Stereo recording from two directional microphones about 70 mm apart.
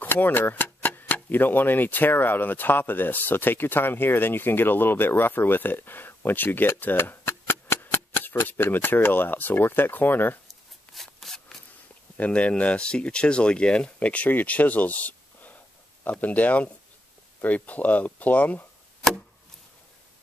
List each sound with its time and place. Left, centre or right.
0.0 s speech: left
11.0 s rub: centre
12.2 s speech: centre